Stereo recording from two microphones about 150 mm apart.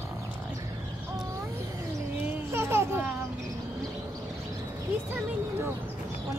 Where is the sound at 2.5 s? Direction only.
15° right (ahead or behind).